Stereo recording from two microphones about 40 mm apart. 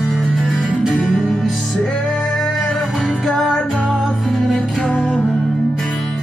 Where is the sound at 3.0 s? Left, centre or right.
Centre.